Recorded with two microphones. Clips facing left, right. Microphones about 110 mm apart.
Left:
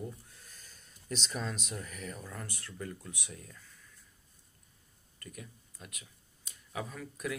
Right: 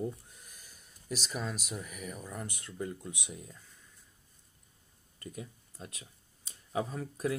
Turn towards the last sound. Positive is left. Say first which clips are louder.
# right 5 dB
turn(degrees=-30)  # may be behind; listen again after turning